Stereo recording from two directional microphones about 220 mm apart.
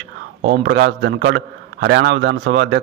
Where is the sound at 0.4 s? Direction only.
50° right (ahead or behind).